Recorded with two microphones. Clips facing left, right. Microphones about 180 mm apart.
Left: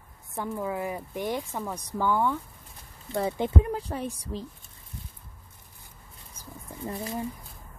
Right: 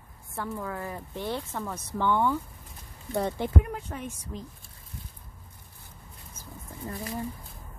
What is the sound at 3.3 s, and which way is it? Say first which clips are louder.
Speech: left 2 dB; 25° left (ahead or behind).